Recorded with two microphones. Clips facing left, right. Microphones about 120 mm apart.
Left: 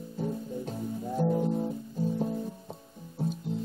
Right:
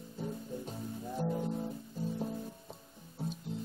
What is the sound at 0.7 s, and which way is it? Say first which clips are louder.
Music: left 9 dB; 30° left (ahead or behind).